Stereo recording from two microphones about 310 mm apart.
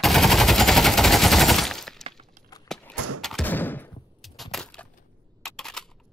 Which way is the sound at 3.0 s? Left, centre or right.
Right.